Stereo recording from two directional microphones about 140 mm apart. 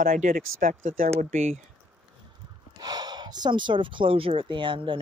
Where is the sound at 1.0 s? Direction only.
50° right (ahead or behind).